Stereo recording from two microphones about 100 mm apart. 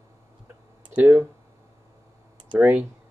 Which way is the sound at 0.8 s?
15° right (ahead or behind).